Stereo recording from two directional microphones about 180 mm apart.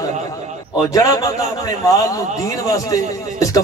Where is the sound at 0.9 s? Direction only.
20° left (ahead or behind).